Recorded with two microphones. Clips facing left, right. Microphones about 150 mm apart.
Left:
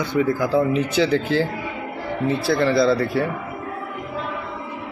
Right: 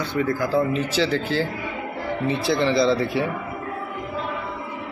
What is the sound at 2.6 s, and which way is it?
Speech, 20° right (ahead or behind).